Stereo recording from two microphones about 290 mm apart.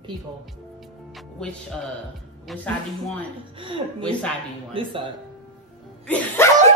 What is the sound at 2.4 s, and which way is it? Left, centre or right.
Speech, centre.